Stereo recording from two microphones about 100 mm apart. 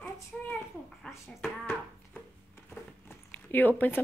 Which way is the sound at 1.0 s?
5° left (ahead or behind).